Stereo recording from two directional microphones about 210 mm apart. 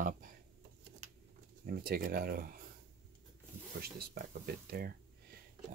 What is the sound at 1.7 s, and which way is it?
Speech, 45° right (ahead or behind).